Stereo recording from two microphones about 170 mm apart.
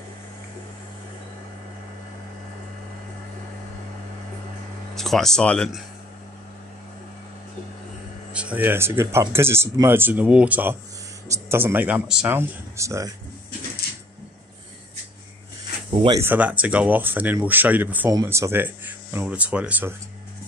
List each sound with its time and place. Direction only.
4.9 s speech: centre (ahead or behind)
8.3 s speech: 5° right (ahead or behind)
15.9 s speech: 35° right (ahead or behind)
16.2 s speech: 10° right (ahead or behind)